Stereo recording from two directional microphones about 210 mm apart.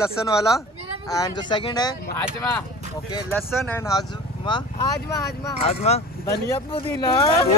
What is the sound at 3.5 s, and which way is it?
Speech, centre (ahead or behind).